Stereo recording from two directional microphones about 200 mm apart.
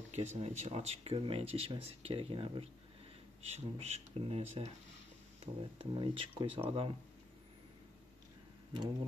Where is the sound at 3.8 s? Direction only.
30° right (ahead or behind).